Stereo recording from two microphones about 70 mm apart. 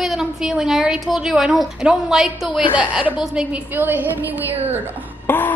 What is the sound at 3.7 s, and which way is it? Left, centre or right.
A woman's voice, right.